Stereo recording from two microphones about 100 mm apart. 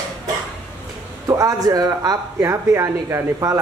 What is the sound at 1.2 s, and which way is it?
Speech, 35° right (ahead or behind).